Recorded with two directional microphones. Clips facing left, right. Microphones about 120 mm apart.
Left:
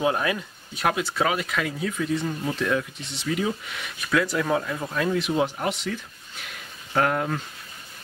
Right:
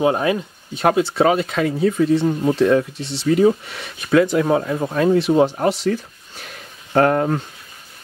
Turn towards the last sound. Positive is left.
turn(degrees=-40)  # may be behind; listen again after turning